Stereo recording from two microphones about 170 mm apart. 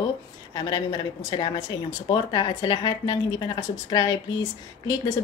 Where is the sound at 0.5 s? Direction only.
25° left (ahead or behind).